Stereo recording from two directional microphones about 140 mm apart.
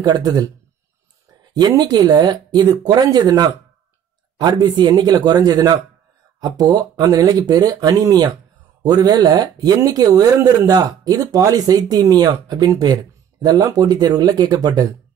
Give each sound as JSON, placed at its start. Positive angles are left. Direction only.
{"t": 0.0, "sound": "speech", "side_deg": -30}